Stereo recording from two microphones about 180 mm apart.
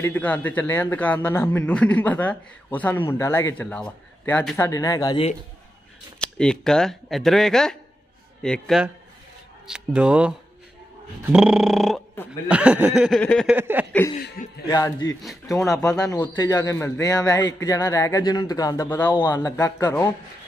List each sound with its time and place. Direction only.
0.0 s a man's voice: 10° left (ahead or behind)
6.1 s speech: 5° left (ahead or behind)
13.5 s speech: 10° right (ahead or behind)
14.4 s speech: 50° left (ahead or behind)
14.7 s a man's voice: 20° left (ahead or behind)